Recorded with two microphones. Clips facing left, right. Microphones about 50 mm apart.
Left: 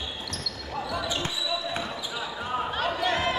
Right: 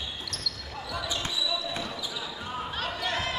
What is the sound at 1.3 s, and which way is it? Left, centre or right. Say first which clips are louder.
Basketball bounce: left 1 dB; centre.